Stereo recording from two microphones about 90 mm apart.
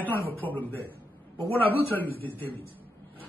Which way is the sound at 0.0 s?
20° left (ahead or behind).